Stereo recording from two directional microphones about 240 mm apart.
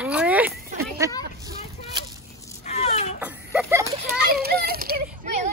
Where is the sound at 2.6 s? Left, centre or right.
Left.